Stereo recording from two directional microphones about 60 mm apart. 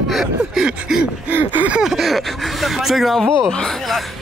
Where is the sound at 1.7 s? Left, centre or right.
Centre.